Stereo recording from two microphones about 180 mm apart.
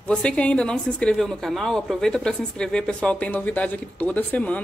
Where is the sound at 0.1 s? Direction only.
5° left (ahead or behind).